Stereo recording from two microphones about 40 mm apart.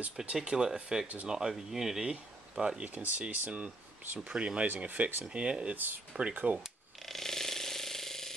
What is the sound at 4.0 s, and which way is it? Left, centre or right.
Speech, right.